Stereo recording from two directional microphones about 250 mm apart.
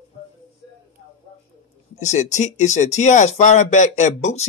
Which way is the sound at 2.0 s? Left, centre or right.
Left.